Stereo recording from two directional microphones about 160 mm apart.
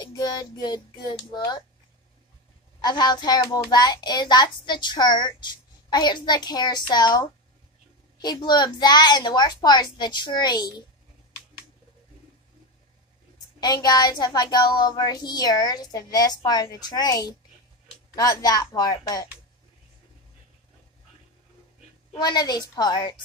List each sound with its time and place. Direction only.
0.0 s speech: 25° left (ahead or behind)
2.8 s a child's voice: 25° left (ahead or behind)
13.6 s a child's voice: 25° left (ahead or behind)
22.2 s a child's voice: 25° left (ahead or behind)